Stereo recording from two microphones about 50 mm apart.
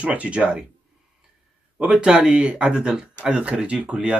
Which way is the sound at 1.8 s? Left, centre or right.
Right.